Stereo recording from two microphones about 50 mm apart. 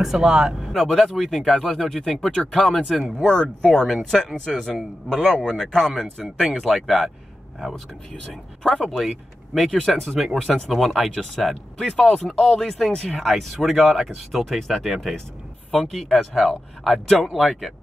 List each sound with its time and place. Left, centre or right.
0.0 s speech: centre
3.3 s speech: centre
6.6 s speech: centre
8.8 s speech: centre